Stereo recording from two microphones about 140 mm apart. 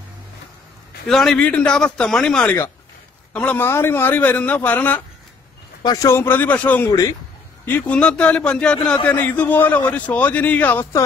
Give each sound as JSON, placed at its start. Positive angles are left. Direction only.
{"t": 1.0, "sound": "a man's voice", "side_deg": 5}
{"t": 5.8, "sound": "a man's voice", "side_deg": 25}
{"t": 6.9, "sound": "speech", "side_deg": 25}
{"t": 7.6, "sound": "a man's voice", "side_deg": 10}